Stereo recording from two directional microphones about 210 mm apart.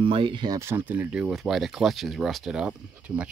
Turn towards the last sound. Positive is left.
turn(degrees=-5)  # may be behind; listen again after turning